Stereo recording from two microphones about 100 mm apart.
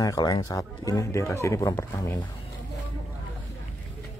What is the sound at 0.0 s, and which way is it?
A man's voice, 35° left (ahead or behind).